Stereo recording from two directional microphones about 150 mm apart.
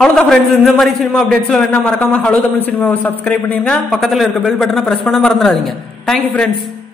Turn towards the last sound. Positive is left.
turn(degrees=0)  # may be behind; listen again after turning